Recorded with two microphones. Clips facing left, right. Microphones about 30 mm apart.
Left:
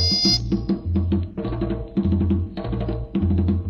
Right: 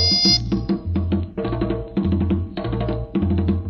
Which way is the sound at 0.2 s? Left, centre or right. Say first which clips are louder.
Right 2 dB; right.